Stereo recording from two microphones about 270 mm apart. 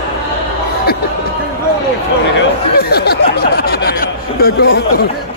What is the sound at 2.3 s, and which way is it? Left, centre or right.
Speech, left.